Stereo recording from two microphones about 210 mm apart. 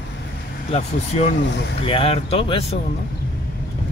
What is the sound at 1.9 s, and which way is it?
Speech, 25° left (ahead or behind).